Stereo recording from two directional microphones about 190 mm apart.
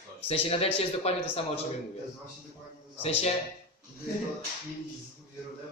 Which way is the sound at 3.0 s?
35° left (ahead or behind).